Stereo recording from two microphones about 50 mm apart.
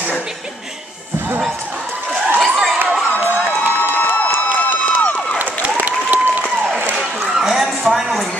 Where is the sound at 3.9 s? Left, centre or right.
Left.